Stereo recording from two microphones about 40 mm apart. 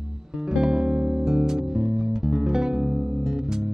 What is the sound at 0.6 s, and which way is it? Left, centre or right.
Music, right.